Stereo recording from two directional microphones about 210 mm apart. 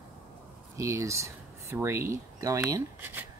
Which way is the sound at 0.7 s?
15° right (ahead or behind).